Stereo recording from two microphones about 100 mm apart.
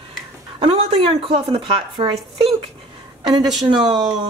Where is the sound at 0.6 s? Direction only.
60° right (ahead or behind).